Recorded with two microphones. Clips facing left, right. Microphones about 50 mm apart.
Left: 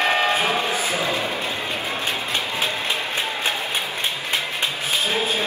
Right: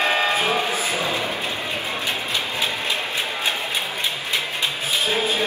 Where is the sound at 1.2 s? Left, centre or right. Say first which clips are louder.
Even; left.